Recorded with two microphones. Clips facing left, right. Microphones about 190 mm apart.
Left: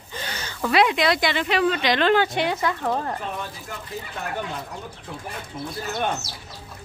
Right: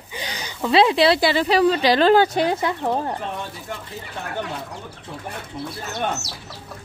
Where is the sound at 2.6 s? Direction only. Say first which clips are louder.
Right 2 dB; 20° right (ahead or behind).